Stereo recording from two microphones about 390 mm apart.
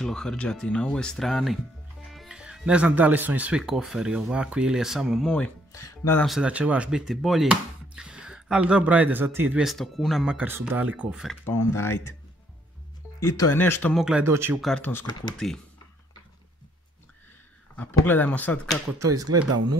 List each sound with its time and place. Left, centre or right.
0.0 s speech: centre
13.2 s speech: centre
17.7 s speech: centre
18.9 s speech: centre
19.2 s speech: right